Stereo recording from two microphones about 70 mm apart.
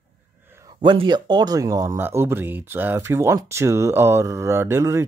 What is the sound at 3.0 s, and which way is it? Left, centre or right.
Speech, right.